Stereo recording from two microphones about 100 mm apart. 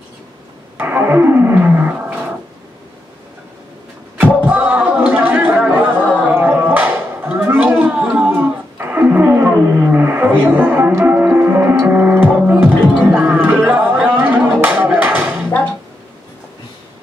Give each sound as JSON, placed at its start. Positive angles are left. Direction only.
{"t": 0.7, "sound": "wild animals", "side_deg": -20}
{"t": 4.5, "sound": "music", "side_deg": -15}
{"t": 6.2, "sound": "a sound", "side_deg": -20}
{"t": 11.8, "sound": "music", "side_deg": -20}